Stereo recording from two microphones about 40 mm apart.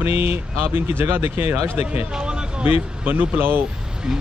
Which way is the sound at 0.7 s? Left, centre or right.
Right.